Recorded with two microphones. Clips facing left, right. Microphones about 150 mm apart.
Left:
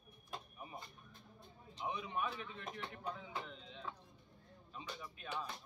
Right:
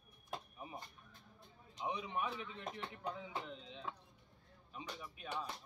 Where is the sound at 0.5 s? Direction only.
20° right (ahead or behind).